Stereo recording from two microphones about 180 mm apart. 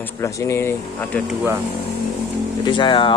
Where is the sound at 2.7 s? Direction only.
25° left (ahead or behind).